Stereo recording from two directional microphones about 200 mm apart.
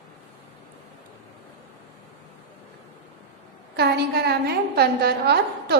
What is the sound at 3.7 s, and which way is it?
A woman's voice, 55° right (ahead or behind).